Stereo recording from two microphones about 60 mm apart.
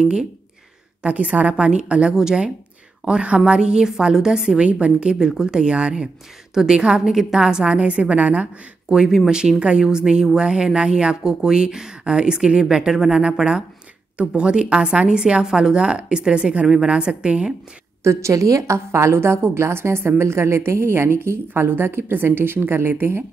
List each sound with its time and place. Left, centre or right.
0.0 s speech: centre
18.0 s a woman's voice: right